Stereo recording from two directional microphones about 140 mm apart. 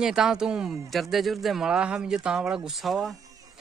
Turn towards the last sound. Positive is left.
turn(degrees=0)  # may be behind; listen again after turning